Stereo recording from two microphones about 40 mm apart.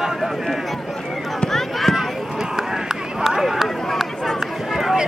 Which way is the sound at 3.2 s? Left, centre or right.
Centre.